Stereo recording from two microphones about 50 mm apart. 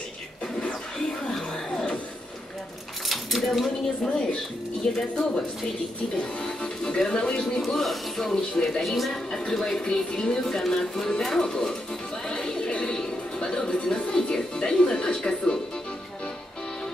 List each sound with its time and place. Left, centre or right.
0.9 s music: centre
3.1 s keys jangling: centre
4.0 s speech: centre
6.4 s speech: centre
8.8 s a woman's voice: centre
12.3 s music: centre